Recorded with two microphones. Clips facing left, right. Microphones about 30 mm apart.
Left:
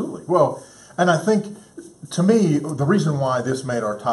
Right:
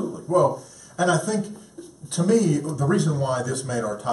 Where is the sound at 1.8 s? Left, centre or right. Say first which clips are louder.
Left 3 dB; centre.